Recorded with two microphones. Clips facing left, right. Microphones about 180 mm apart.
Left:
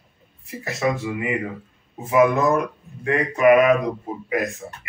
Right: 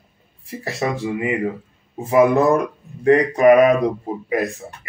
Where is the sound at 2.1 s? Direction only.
35° right (ahead or behind).